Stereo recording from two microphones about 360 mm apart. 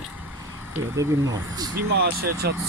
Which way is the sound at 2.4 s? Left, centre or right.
Right.